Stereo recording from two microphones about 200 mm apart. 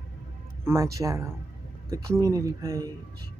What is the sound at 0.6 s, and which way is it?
Speech, 15° right (ahead or behind).